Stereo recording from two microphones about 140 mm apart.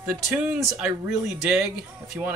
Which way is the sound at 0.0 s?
5° right (ahead or behind).